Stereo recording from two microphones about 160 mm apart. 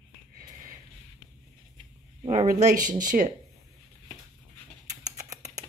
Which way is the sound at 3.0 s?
55° right (ahead or behind).